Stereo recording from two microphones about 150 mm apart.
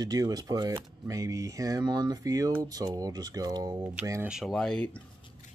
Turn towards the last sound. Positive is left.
turn(degrees=5)  # may be behind; listen again after turning